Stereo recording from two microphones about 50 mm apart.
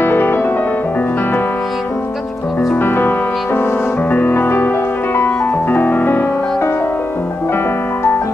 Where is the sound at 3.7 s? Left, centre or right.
Left.